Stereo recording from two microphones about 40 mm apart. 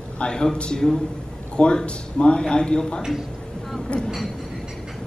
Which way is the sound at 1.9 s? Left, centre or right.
Left.